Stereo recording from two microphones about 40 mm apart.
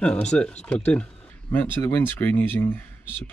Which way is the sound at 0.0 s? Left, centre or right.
Left.